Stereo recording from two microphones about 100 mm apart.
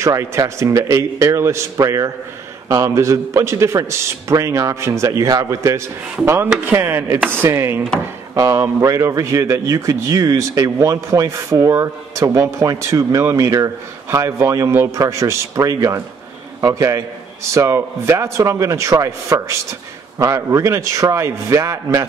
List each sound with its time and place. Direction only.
0.0 s a man's voice: 30° right (ahead or behind)